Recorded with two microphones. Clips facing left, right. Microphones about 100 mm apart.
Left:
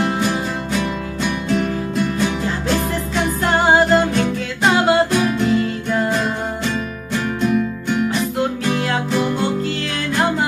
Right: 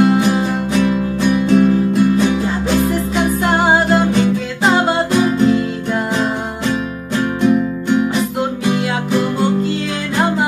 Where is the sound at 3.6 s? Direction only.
Centre (ahead or behind).